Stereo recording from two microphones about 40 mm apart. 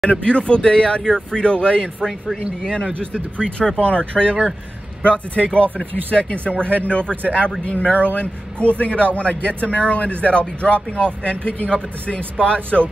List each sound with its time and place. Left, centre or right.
0.1 s speech: left
2.0 s speech: centre; by 12.8 s left